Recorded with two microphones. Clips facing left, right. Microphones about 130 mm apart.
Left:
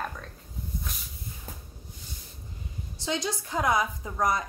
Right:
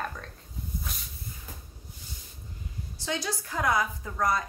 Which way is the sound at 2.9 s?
20° left (ahead or behind).